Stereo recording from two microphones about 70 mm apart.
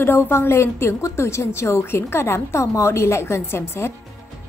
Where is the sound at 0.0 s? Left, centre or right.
Left.